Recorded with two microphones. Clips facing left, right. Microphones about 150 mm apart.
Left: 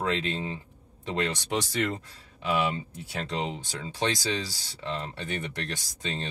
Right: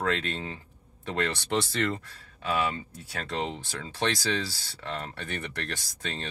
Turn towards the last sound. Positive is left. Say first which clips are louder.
# left 2 dB
turn(degrees=15)  # may be behind; listen again after turning